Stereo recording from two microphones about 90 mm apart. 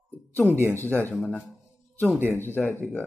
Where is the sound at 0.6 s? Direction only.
35° right (ahead or behind).